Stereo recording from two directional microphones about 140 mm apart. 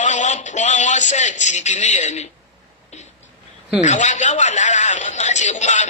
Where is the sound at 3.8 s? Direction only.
60° left (ahead or behind).